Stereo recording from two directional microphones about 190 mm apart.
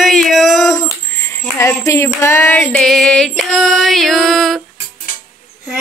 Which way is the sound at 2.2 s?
10° left (ahead or behind).